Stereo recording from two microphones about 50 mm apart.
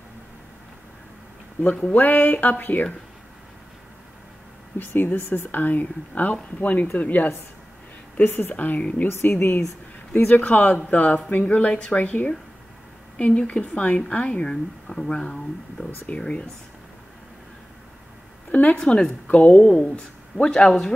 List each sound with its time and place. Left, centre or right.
1.9 s speech: left
4.7 s a woman's voice: left
9.1 s a woman's voice: left
10.2 s speech: left
13.4 s speech: left
14.5 s speech: centre
18.5 s speech: left
18.8 s speech: centre
19.2 s speech: left
20.6 s speech: centre